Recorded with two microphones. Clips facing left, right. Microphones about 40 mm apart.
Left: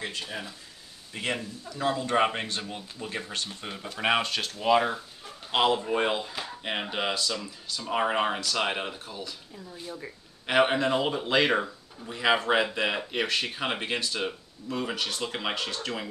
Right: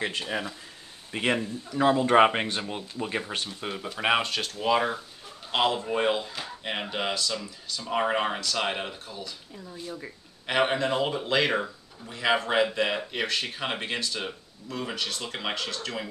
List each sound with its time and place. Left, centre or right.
0.2 s speech: right
3.4 s a man's voice: centre